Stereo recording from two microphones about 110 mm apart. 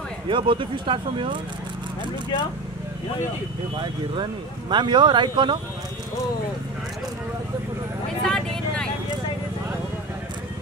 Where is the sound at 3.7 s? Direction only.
45° right (ahead or behind).